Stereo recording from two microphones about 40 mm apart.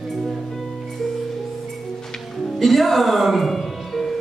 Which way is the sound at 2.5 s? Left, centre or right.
Centre.